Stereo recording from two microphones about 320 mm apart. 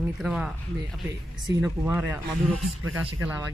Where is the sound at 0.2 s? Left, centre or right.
Centre.